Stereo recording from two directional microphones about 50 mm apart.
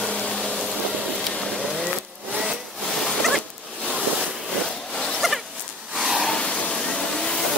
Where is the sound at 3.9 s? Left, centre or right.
Right.